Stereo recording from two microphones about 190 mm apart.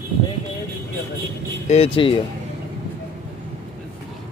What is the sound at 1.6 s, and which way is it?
Speech, 30° left (ahead or behind).